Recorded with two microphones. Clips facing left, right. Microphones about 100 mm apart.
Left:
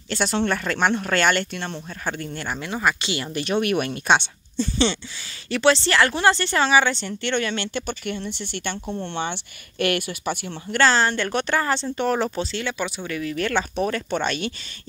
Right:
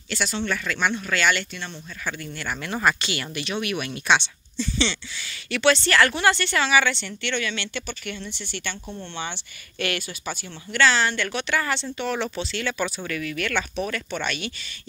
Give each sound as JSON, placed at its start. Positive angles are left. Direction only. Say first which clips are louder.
{"t": 0.1, "sound": "speech", "louder": "left 4 dB", "side_deg": 45}
{"t": 2.0, "sound": "speech", "louder": "left 2 dB", "side_deg": 35}
{"t": 2.7, "sound": "speech", "louder": "right 1 dB", "side_deg": 15}
{"t": 3.3, "sound": "speech", "louder": "left 8 dB", "side_deg": 45}
{"t": 5.5, "sound": "speech", "louder": "left 2 dB", "side_deg": 30}
{"t": 10.8, "sound": "speech", "louder": "left 2 dB", "side_deg": 40}
{"t": 12.5, "sound": "speech", "louder": "even", "side_deg": 20}